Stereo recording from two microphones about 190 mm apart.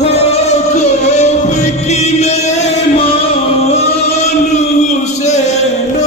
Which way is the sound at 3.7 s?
35° left (ahead or behind).